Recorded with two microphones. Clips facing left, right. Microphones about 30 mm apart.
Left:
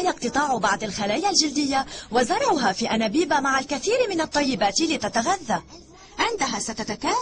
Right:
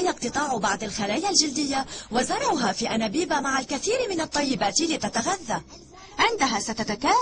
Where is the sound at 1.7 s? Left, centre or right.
Left.